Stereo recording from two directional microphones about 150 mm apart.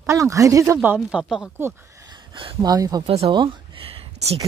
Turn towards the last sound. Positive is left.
turn(degrees=-40)  # may be behind; listen again after turning